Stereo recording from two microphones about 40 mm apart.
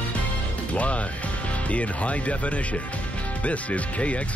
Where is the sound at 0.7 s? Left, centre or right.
Left.